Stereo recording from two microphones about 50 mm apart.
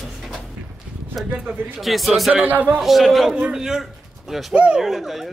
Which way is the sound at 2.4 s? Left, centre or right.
Right.